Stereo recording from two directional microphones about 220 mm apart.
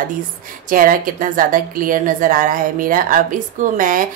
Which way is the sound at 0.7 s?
40° right (ahead or behind).